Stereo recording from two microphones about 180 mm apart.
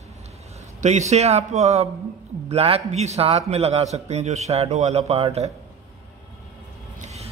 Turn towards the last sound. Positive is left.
turn(degrees=-40)  # may be behind; listen again after turning